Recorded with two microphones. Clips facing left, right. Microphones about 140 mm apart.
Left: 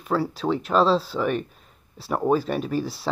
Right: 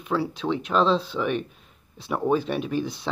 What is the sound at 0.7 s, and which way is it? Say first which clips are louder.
Speech: left 2 dB; 40° left (ahead or behind).